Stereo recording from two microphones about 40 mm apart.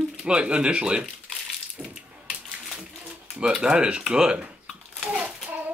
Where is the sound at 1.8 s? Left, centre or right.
Right.